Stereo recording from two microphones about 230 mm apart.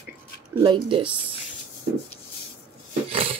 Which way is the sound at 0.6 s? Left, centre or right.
Right.